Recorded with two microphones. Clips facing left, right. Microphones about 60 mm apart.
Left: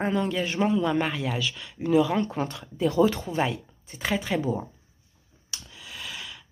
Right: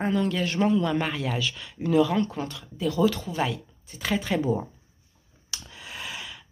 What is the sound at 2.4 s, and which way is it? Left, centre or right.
Speech, left.